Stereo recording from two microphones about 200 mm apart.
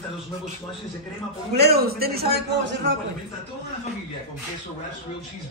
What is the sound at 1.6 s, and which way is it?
A man's voice, 50° right (ahead or behind).